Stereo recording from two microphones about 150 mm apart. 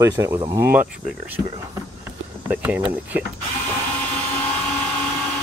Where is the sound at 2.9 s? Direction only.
10° right (ahead or behind).